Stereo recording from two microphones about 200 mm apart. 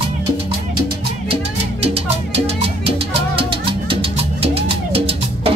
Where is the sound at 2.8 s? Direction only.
30° right (ahead or behind).